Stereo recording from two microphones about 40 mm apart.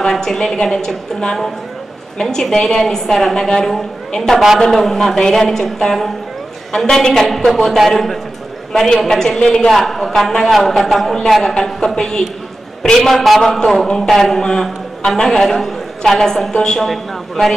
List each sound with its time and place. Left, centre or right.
0.0 s a man's voice: centre
3.3 s a woman's voice: centre
9.7 s a man's voice: centre
11.4 s a man's voice: centre